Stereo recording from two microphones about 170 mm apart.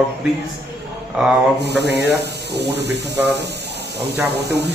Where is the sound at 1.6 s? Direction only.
80° right.